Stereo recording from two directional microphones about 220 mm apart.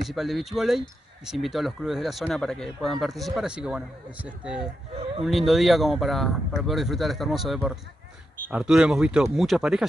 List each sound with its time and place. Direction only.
0.1 s speech: centre (ahead or behind)